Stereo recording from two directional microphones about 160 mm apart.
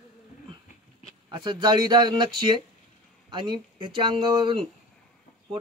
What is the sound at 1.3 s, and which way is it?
Speech, 30° right (ahead or behind).